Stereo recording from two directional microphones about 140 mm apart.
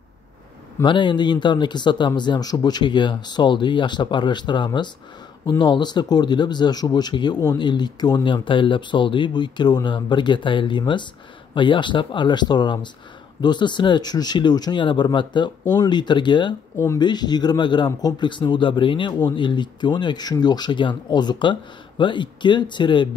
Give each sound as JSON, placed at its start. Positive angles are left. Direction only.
{"t": 0.8, "sound": "speech", "side_deg": 35}
{"t": 16.7, "sound": "speech", "side_deg": 20}
{"t": 17.0, "sound": "speech", "side_deg": 30}